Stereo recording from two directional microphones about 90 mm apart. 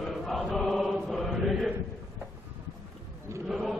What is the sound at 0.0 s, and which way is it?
Chant, centre (ahead or behind).